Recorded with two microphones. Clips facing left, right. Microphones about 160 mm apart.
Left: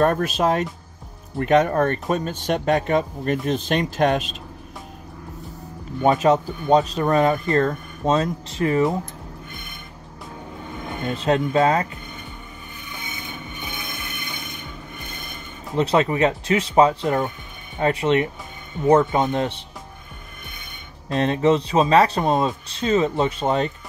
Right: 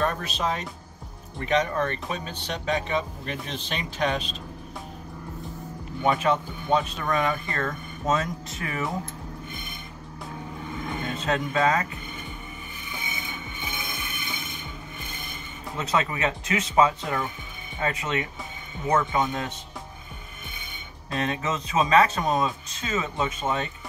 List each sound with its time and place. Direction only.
0.0 s speech: 50° left (ahead or behind)
6.0 s speech: 40° left (ahead or behind)
11.1 s speech: 30° left (ahead or behind)
15.7 s speech: 30° left (ahead or behind)
21.1 s speech: 35° left (ahead or behind)